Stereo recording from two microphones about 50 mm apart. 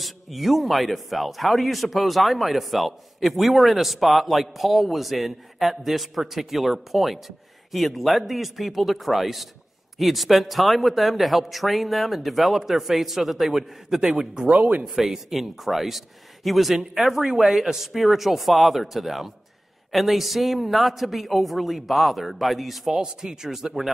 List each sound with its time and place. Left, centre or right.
0.0 s a man's voice: centre; by 14.9 s right
15.0 s a man's voice: centre